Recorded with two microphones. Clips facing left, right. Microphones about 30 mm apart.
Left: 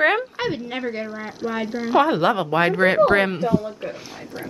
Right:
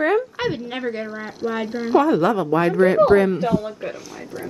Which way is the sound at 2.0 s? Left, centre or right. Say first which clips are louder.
Right 1 dB; left.